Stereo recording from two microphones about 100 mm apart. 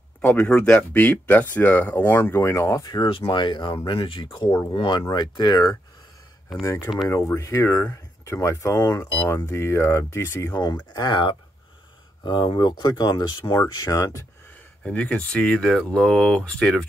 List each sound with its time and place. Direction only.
0.2 s speech: 15° left (ahead or behind); by 3.1 s 40° left (ahead or behind)
3.1 s speech: 55° left (ahead or behind)
7.3 s speech: 30° left (ahead or behind)
9.1 s speech: 25° left (ahead or behind)
10.5 s speech: 45° left (ahead or behind)
14.8 s speech: 10° left (ahead or behind)